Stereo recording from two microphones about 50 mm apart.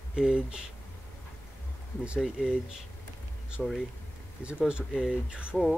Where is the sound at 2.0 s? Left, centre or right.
Right.